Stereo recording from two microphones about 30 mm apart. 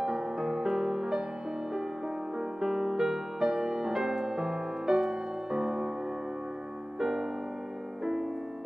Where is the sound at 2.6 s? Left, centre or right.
Centre.